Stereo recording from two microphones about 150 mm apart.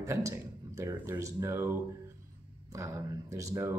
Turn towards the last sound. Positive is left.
turn(degrees=-20)  # may be behind; listen again after turning